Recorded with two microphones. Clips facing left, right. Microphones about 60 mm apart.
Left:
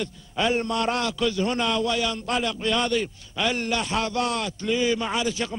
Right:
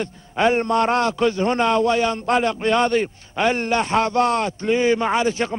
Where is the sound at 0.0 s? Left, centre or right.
Right.